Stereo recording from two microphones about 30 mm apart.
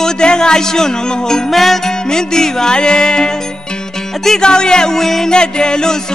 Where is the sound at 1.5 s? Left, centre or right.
Centre.